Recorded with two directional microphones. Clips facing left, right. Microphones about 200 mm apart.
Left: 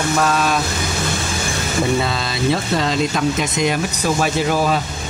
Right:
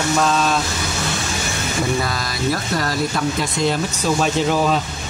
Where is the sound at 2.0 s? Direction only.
25° left (ahead or behind); by 4.7 s 10° left (ahead or behind).